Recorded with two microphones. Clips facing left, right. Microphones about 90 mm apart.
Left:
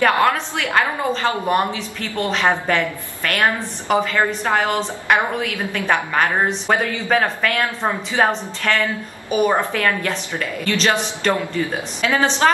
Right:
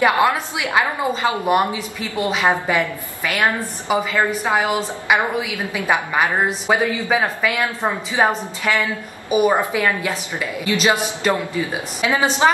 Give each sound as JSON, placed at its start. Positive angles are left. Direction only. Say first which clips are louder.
{"t": 0.0, "sound": "a woman's voice", "louder": "even", "side_deg": -15}